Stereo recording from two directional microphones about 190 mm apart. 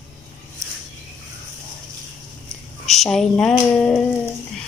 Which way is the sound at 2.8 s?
Centre (ahead or behind).